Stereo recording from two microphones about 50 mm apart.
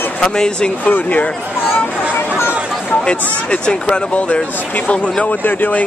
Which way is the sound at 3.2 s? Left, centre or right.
Left.